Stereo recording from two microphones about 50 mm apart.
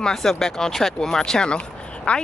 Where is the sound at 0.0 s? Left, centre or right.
Centre.